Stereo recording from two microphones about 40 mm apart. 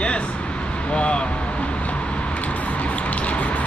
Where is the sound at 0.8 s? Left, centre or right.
Left.